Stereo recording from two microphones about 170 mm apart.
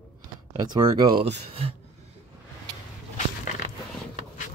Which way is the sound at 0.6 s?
25° right (ahead or behind).